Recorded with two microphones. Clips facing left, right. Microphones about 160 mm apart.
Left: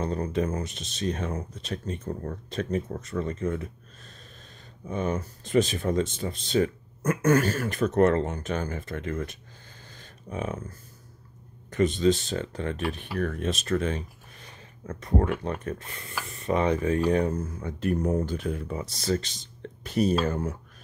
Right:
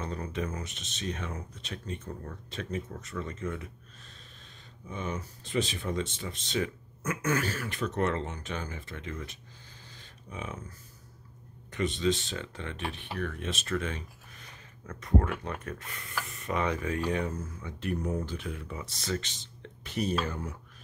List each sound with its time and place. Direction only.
0.0 s speech: 35° left (ahead or behind)
4.8 s speech: 45° left (ahead or behind)
9.9 s a sound: 50° left (ahead or behind)
11.7 s speech: 40° left (ahead or behind)